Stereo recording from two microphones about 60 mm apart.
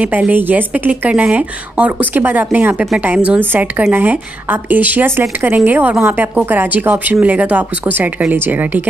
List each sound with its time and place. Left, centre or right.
0.0 s a woman's voice: right